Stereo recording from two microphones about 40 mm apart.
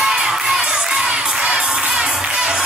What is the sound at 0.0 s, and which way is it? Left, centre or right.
Children shouting, centre.